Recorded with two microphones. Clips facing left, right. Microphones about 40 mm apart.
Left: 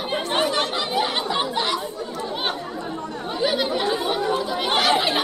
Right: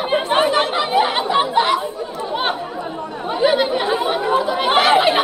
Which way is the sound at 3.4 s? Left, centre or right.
Right.